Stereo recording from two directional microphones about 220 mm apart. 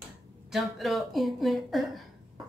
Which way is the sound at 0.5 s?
Centre (ahead or behind).